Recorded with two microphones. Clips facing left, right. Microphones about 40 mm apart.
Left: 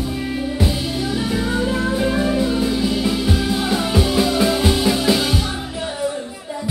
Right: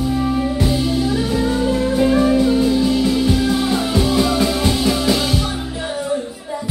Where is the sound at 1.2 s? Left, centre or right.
Centre.